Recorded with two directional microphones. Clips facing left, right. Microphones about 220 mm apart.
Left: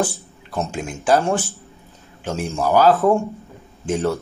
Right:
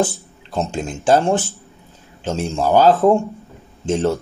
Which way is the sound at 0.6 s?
25° right (ahead or behind).